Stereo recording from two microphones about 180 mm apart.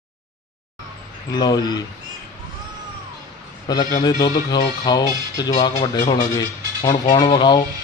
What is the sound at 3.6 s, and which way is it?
Speech, 20° left (ahead or behind).